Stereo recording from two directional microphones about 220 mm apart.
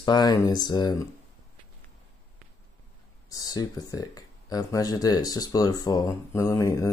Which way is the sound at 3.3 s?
15° left (ahead or behind).